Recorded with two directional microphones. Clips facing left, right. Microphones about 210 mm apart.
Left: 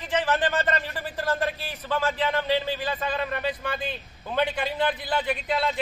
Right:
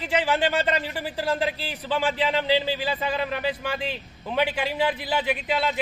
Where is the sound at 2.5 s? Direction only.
90° right.